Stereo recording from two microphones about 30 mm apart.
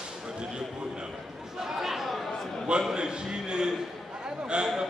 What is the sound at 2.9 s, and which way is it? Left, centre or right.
A man's voice, right.